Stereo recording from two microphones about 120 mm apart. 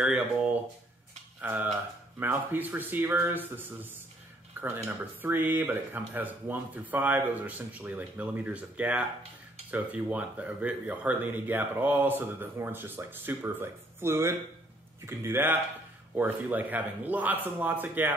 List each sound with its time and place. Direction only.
0.0 s a man's voice: 10° right (ahead or behind)